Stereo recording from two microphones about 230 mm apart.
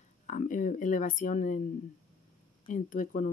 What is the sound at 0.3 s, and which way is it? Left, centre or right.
Speech, left.